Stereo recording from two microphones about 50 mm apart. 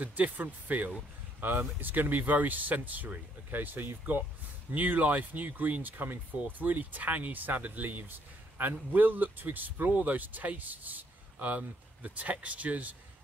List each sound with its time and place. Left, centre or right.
0.0 s speech: right